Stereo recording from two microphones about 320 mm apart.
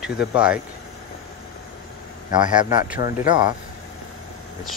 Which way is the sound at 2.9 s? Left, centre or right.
Left.